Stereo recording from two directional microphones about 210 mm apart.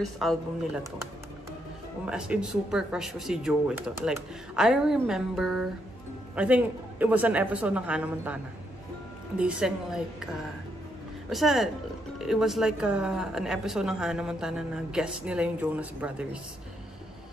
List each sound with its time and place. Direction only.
0.0 s a woman's voice: centre (ahead or behind)
2.0 s a woman's voice: 5° right (ahead or behind)
9.4 s a woman's voice: 5° right (ahead or behind)